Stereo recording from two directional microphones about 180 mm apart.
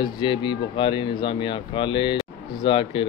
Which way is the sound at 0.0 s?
25° left (ahead or behind).